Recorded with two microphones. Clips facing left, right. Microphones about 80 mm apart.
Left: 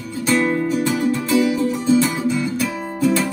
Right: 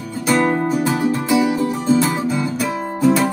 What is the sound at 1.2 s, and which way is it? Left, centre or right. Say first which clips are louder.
Music: right 1 dB; centre.